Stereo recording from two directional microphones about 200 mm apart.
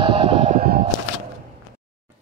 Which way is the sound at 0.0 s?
30° right (ahead or behind).